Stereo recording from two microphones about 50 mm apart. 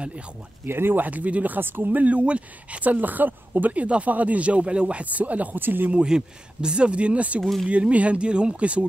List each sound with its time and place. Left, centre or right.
0.7 s speech: right
5.6 s speech: right
5.9 s speech: centre